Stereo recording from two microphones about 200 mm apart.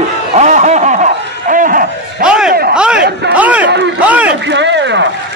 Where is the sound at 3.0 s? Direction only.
50° right (ahead or behind).